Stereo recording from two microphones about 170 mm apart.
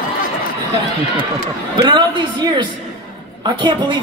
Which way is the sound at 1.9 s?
25° right (ahead or behind).